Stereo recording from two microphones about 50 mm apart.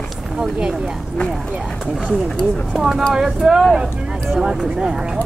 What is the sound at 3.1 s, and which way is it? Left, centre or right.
Speech, centre.